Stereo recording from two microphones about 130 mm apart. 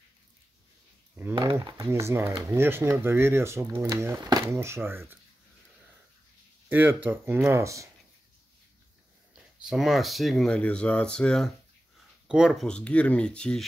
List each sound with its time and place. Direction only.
1.8 s speech: 20° right (ahead or behind)
6.7 s speech: 15° right (ahead or behind)
9.3 s speech: centre (ahead or behind)
12.6 s speech: 10° left (ahead or behind)